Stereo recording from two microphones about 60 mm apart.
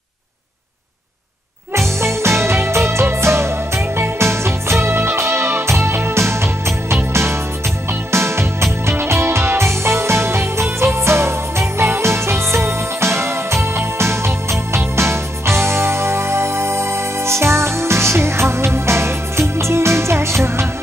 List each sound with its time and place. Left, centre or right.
1.7 s music: right
8.1 s music: right